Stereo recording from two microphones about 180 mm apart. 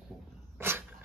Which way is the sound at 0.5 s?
10° right (ahead or behind).